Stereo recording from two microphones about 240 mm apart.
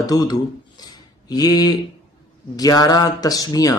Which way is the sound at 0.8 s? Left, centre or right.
Centre.